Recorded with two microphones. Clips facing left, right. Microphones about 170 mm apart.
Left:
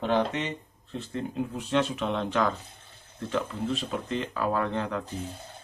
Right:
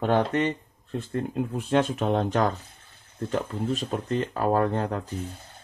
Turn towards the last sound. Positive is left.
turn(degrees=-45)  # may be behind; listen again after turning